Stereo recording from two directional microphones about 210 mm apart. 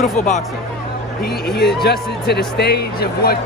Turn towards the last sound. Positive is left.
turn(degrees=50)  # may be behind; listen again after turning